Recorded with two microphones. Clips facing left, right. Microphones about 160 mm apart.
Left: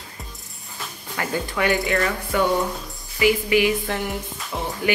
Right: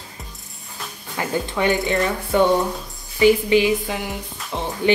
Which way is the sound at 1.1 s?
20° right (ahead or behind).